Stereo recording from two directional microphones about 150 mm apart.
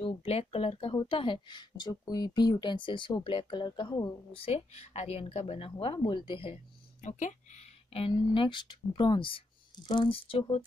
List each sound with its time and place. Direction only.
0.0 s speech: 45° left (ahead or behind)
7.0 s speech: 55° left (ahead or behind); by 10.6 s 40° left (ahead or behind)